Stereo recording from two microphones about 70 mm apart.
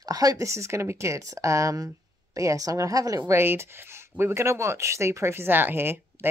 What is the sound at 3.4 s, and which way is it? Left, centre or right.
A woman's voice, right.